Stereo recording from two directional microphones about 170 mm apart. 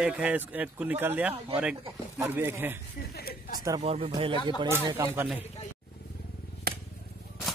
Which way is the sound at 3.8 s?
35° right (ahead or behind).